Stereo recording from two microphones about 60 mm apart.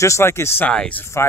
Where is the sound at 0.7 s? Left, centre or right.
Left.